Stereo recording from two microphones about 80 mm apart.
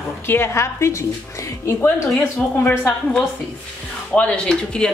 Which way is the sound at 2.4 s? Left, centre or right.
Centre.